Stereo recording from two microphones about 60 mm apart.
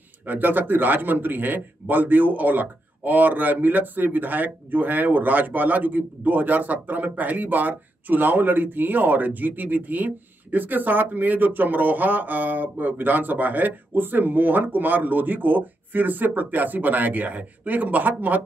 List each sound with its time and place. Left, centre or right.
0.3 s speech: right